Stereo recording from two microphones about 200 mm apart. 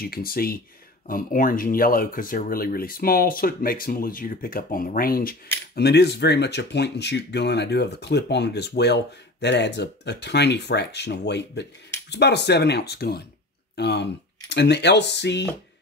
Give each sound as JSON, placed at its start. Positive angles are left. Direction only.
{"t": 0.0, "sound": "speech", "side_deg": 50}